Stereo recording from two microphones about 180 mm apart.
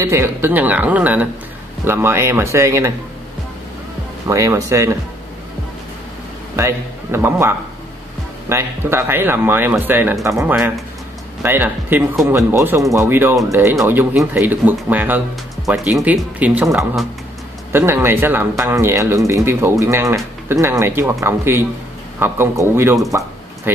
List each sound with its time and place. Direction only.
0.0 s speech: 15° right (ahead or behind)
4.3 s speech: 15° right (ahead or behind)
6.5 s speech: 15° right (ahead or behind)